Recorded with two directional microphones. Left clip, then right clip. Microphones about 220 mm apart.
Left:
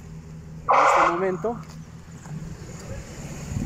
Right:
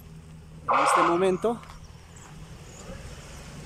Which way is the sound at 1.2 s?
5° right (ahead or behind).